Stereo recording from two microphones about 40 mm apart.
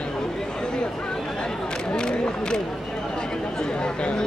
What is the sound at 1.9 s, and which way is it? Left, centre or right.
Speech, left.